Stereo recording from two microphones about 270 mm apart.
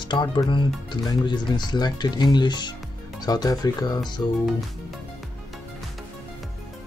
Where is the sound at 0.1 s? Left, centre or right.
Centre.